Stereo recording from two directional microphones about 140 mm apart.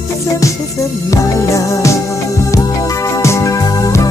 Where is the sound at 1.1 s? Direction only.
25° left (ahead or behind).